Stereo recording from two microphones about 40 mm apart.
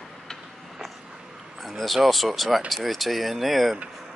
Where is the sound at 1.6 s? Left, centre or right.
Centre.